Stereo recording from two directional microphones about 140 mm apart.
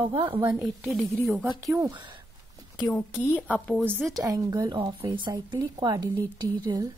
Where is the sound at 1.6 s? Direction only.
20° right (ahead or behind).